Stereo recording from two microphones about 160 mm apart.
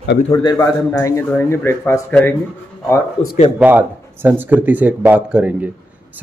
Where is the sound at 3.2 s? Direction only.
35° left (ahead or behind).